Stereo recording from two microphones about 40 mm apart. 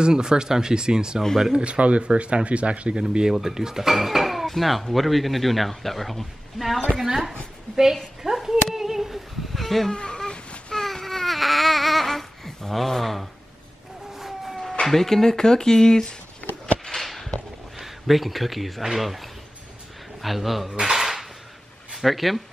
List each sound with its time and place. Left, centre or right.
0.0 s speech: centre
1.6 s speech: right
3.0 s speech: centre
7.7 s a woman's voice: centre
8.2 s a sound: centre
9.9 s a sound: left
10.7 s babbling: centre
14.1 s a sound: centre
14.7 s speech: centre
16.8 s a sound: centre
17.7 s speech: centre
20.8 s dishes: centre
21.9 s speech: centre